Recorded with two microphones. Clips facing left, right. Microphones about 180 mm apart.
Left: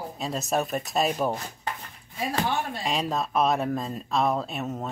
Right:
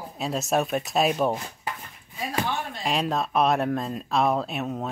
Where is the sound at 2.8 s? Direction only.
Centre (ahead or behind).